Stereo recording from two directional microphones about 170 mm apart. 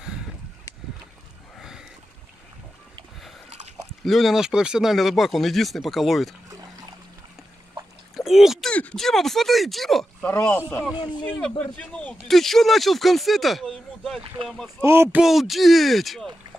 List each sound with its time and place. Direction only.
1.6 s boat: 5° right (ahead or behind)
3.4 s a sound: 40° right (ahead or behind)
4.0 s speech: centre (ahead or behind)
8.2 s speech: centre (ahead or behind)
11.0 s speech: 25° left (ahead or behind)
11.2 s speech: 5° left (ahead or behind)
14.8 s speech: 15° right (ahead or behind)
15.2 s speech: centre (ahead or behind)